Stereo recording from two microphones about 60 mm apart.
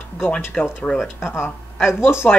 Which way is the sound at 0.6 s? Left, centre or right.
Left.